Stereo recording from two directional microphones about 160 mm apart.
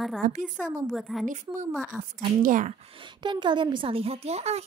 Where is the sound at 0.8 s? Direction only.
Centre (ahead or behind).